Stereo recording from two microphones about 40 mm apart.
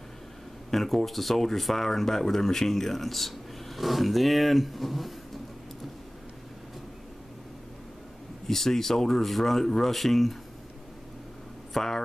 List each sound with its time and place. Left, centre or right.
0.7 s speech: centre
8.5 s speech: centre
11.7 s speech: centre